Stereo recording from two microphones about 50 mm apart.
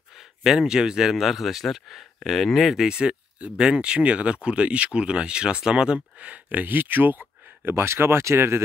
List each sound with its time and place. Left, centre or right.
0.1 s speech: centre; by 7.7 s right
7.7 s speech: right